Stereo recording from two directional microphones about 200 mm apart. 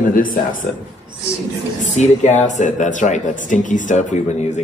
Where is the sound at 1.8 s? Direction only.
35° left (ahead or behind).